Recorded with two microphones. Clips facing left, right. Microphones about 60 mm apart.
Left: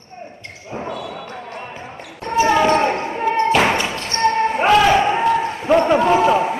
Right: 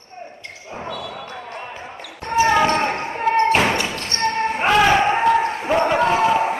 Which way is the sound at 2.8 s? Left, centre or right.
Right.